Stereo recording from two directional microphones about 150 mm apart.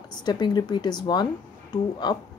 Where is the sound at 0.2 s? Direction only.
30° left (ahead or behind).